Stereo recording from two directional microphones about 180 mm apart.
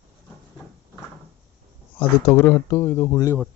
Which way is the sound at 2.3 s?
15° left (ahead or behind).